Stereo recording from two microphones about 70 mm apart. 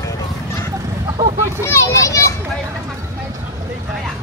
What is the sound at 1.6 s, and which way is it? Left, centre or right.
Children playing, left.